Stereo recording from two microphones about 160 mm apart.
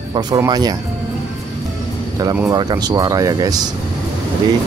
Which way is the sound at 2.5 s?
25° right (ahead or behind).